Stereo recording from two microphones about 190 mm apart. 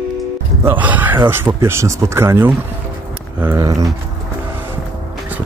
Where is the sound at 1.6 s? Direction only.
15° right (ahead or behind).